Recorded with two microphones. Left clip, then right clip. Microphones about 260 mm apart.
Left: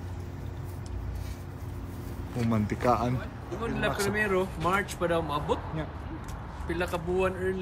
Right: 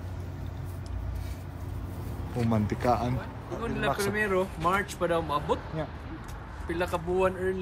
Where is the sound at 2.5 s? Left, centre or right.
Centre.